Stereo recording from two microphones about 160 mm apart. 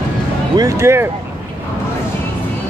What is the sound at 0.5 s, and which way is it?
Speech, 20° right (ahead or behind).